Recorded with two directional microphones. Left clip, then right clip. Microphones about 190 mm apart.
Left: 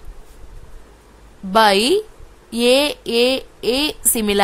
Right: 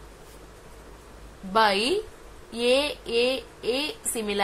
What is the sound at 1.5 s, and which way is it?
A woman's voice, 55° left (ahead or behind).